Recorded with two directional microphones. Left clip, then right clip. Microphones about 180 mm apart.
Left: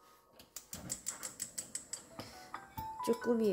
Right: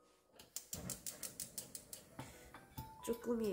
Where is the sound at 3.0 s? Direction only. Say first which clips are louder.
Left 7 dB; 25° left (ahead or behind).